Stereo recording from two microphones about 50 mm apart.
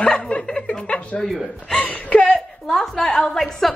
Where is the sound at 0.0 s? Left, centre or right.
Left.